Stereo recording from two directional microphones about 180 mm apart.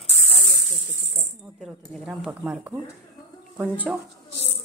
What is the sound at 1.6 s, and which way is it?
A woman's voice, centre (ahead or behind).